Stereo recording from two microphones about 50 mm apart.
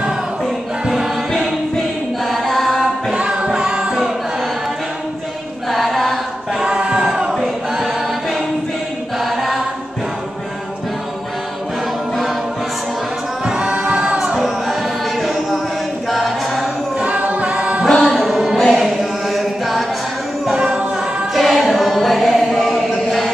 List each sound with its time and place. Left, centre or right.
0.8 s choir: centre
2.2 s choir: centre
3.1 s music: centre
5.7 s chant: centre
6.6 s a sound: centre
7.3 s choir: centre
13.5 s choir: centre
14.4 s choir: centre
17.0 s a capella: right
17.8 s music: centre
18.1 s music: centre
18.6 s choir: centre
20.5 s music: centre
21.3 s choir: centre